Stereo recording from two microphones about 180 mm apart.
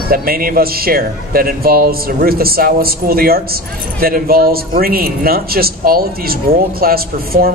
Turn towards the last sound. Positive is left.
turn(degrees=-55)  # may be behind; listen again after turning